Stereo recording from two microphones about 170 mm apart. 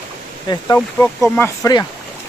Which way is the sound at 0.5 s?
25° left (ahead or behind).